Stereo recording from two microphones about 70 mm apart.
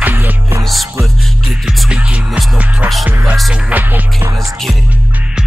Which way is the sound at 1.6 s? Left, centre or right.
Centre.